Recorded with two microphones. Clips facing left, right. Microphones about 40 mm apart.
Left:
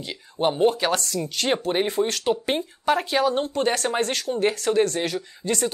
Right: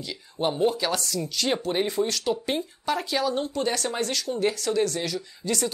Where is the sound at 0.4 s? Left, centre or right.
Left.